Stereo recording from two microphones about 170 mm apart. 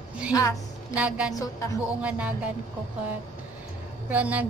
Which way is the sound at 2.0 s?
10° right (ahead or behind).